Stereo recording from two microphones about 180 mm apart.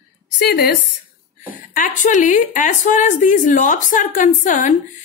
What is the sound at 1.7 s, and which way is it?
A woman's voice, 45° left (ahead or behind).